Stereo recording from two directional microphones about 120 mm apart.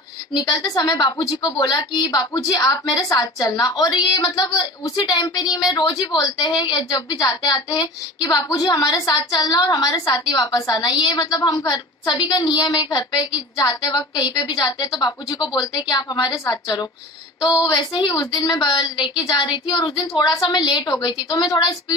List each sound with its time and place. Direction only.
0.3 s a woman's voice: 35° left (ahead or behind)